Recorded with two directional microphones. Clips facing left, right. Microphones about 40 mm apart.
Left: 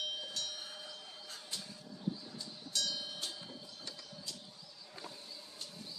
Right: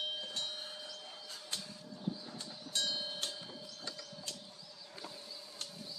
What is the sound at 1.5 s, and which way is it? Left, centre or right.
Vehicle, right.